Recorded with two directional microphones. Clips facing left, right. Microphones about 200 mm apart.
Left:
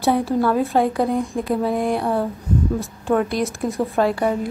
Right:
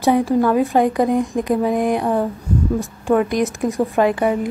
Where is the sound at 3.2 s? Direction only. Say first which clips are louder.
Right 3 dB; 15° right (ahead or behind).